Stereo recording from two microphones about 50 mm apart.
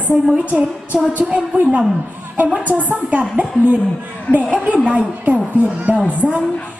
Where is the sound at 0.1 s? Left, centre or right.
Right.